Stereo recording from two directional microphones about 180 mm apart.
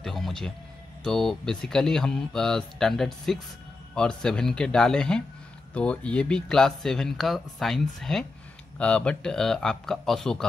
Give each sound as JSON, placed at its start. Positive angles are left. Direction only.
{"t": 0.0, "sound": "speech", "side_deg": 0}